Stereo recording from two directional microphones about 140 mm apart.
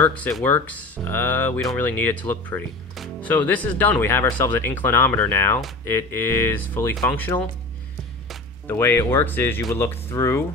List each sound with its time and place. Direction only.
0.0 s speech: 10° left (ahead or behind)
8.6 s speech: 15° left (ahead or behind)